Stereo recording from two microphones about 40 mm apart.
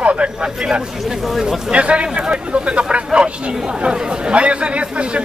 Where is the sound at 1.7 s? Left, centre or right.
Right.